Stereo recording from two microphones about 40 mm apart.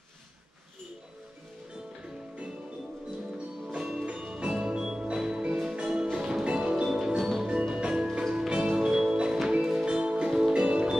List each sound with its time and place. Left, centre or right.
3.7 s music: centre
6.4 s music: right
7.2 s music: centre
7.4 s music: right